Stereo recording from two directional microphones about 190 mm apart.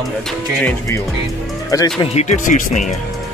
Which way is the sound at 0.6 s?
10° left (ahead or behind).